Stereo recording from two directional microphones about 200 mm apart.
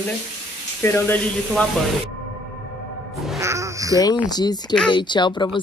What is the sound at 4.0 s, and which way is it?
Speech, 20° left (ahead or behind).